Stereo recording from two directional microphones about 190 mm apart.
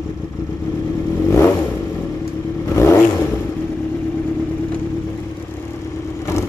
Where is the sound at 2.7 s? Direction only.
15° left (ahead or behind).